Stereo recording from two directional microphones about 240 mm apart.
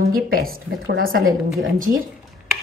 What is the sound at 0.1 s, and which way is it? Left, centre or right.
A woman's voice, right.